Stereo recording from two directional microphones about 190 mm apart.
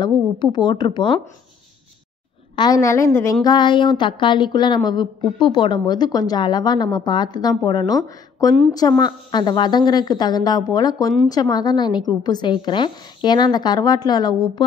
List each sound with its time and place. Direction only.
0.0 s a woman's voice: 25° left (ahead or behind)
2.5 s a woman's voice: 20° left (ahead or behind)